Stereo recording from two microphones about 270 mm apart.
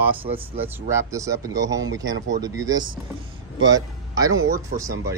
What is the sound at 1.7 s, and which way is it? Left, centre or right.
Speech, right.